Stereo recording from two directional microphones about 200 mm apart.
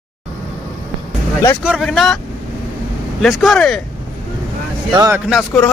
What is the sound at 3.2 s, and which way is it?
Speech, centre (ahead or behind).